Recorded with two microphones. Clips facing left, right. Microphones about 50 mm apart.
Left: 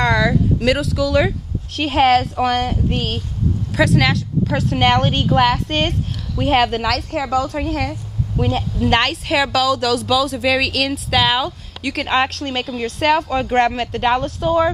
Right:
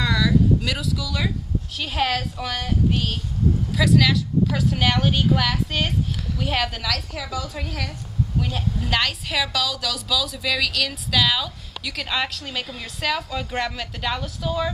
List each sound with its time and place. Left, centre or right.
0.0 s a sound: left
0.7 s speech: left
10.5 s speech: left
12.4 s a woman's voice: left
13.0 s speech: left